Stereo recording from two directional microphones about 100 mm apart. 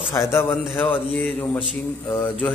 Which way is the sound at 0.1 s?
25° left (ahead or behind).